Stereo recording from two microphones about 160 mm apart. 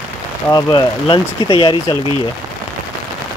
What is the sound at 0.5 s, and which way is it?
Speech, 25° left (ahead or behind).